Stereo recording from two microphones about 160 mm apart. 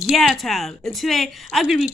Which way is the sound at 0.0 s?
Centre (ahead or behind).